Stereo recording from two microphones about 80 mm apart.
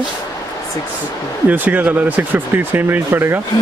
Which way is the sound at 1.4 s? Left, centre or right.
Right.